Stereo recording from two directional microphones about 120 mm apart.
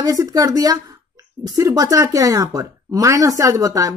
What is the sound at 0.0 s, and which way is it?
Speech, 30° right (ahead or behind).